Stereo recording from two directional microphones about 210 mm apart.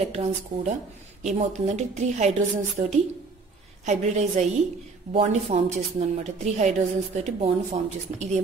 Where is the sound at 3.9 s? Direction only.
35° right (ahead or behind).